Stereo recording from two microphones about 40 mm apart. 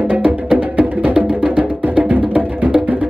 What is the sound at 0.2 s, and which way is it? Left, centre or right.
Music, right.